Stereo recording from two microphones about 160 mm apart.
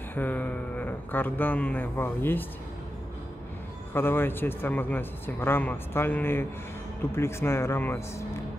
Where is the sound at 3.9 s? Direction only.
15° left (ahead or behind).